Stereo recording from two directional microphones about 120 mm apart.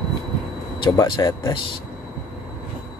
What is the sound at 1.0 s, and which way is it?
Speech, 35° left (ahead or behind).